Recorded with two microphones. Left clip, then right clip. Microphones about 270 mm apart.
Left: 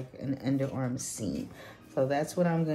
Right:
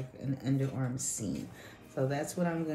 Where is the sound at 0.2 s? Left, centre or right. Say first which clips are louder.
Left 4 dB; left.